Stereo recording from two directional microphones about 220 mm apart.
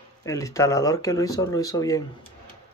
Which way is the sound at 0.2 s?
15° left (ahead or behind).